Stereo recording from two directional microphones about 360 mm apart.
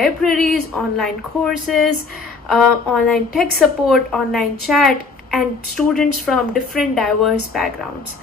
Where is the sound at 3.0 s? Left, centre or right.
Centre.